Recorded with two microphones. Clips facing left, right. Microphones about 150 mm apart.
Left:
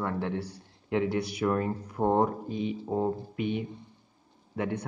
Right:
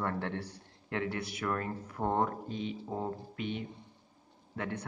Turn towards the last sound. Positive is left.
turn(degrees=15)  # may be behind; listen again after turning